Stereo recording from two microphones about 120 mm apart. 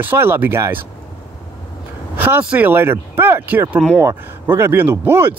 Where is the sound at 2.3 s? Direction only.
15° right (ahead or behind).